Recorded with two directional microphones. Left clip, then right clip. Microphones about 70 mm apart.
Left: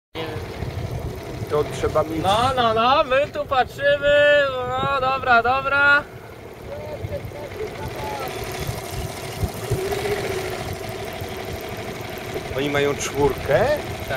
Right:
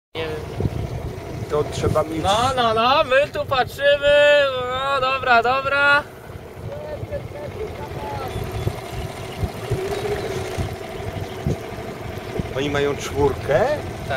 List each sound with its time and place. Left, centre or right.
1.5 s speech: centre
2.5 s speech: right
9.8 s vehicle: left
12.5 s speech: centre
13.5 s speech: centre